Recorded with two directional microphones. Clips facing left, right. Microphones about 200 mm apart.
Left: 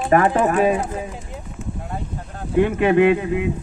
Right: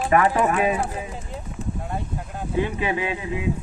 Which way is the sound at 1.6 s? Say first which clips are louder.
Right 1 dB; 35° right (ahead or behind).